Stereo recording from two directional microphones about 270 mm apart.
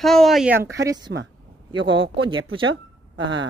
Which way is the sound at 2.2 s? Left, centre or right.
Centre.